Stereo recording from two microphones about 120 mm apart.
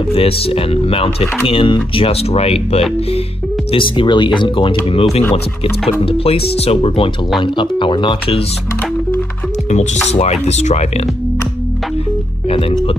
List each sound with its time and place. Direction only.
0.1 s speech: 50° left (ahead or behind)
3.7 s speech: 45° left (ahead or behind)
4.8 s speech: 55° left (ahead or behind)
10.0 s speech: 65° left (ahead or behind)
12.4 s music: 55° left (ahead or behind)